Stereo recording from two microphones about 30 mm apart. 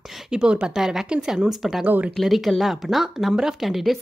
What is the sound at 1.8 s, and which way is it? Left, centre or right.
Speech, right.